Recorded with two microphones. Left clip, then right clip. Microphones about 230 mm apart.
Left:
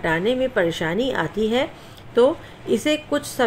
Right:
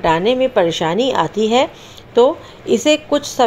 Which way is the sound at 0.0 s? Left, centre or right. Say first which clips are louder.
Right 7 dB; centre.